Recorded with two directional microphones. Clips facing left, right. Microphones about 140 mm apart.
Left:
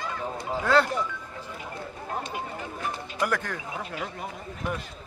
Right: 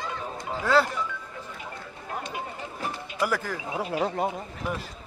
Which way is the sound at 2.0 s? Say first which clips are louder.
Left 1 dB; 30° left (ahead or behind).